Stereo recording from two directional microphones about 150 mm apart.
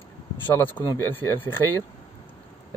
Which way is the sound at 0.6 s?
15° left (ahead or behind).